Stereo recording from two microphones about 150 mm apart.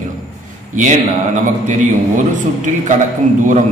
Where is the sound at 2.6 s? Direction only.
55° right (ahead or behind).